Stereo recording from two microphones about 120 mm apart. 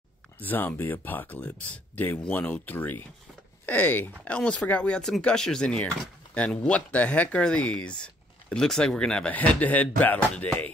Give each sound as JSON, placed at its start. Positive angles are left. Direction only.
{"t": 0.4, "sound": "speech", "side_deg": 15}